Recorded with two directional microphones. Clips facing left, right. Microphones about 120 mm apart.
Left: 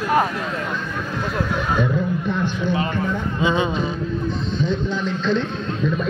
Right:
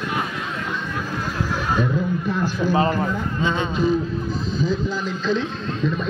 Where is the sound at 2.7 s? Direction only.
35° right (ahead or behind).